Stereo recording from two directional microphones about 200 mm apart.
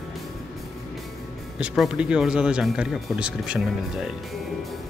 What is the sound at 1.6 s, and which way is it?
Speech, 5° right (ahead or behind).